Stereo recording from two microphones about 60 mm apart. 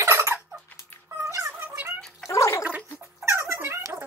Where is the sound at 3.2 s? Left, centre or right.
Right.